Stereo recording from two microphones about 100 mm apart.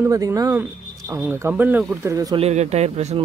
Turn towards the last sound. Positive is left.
turn(degrees=-90)